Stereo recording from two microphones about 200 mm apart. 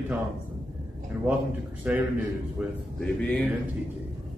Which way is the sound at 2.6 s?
5° left (ahead or behind).